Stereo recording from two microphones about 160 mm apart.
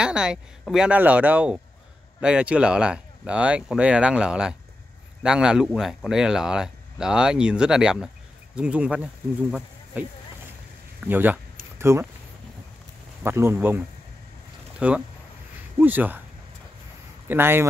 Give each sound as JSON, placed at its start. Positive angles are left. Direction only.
{"t": 0.0, "sound": "speech", "side_deg": -5}
{"t": 11.1, "sound": "speech", "side_deg": -10}
{"t": 13.2, "sound": "speech", "side_deg": -15}
{"t": 17.3, "sound": "speech", "side_deg": -15}